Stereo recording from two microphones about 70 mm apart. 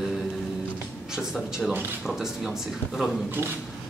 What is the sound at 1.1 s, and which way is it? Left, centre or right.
A man's voice, centre.